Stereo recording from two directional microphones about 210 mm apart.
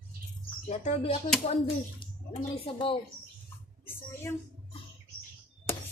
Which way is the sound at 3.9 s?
10° left (ahead or behind).